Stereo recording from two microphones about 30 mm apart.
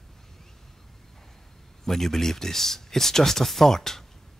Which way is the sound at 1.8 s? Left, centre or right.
Centre.